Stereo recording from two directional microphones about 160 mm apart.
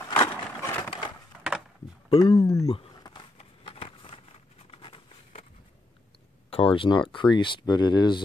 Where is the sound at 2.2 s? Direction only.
20° left (ahead or behind).